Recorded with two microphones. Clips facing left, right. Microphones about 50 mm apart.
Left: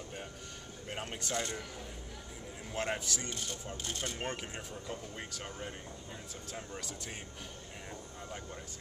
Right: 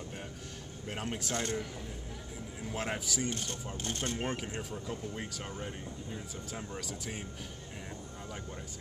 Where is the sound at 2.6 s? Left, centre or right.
Centre.